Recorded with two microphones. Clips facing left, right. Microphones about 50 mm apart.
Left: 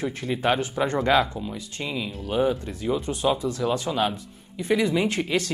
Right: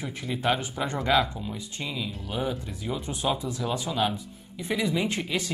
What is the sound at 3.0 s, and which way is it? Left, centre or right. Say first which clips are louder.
Speech: left 3 dB; centre.